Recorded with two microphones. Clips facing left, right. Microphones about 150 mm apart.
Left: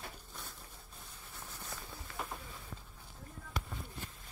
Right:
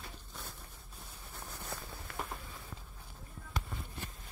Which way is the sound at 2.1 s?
60° right (ahead or behind).